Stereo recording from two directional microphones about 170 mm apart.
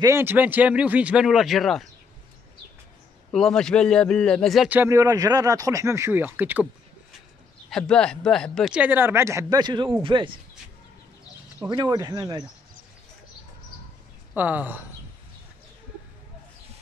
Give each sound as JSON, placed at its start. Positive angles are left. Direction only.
{"t": 0.0, "sound": "speech", "side_deg": -15}
{"t": 3.3, "sound": "a man's voice", "side_deg": 5}
{"t": 4.6, "sound": "speech", "side_deg": -15}
{"t": 7.7, "sound": "speech", "side_deg": 5}
{"t": 11.6, "sound": "speech", "side_deg": -20}
{"t": 14.3, "sound": "speech", "side_deg": -10}